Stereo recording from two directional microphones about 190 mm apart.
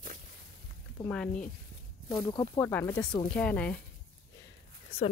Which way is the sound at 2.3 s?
25° left (ahead or behind).